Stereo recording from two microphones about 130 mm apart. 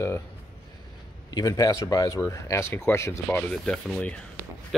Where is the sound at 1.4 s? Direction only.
30° left (ahead or behind).